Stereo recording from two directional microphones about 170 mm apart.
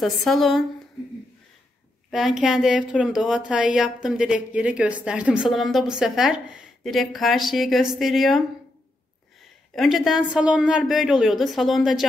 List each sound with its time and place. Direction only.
0.0 s speech: centre (ahead or behind)
2.0 s speech: centre (ahead or behind)
9.8 s speech: centre (ahead or behind)